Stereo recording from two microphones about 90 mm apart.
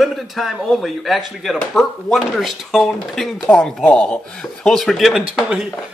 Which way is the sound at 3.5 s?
20° left (ahead or behind).